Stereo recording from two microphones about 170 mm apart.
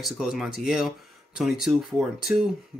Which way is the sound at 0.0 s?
Centre (ahead or behind).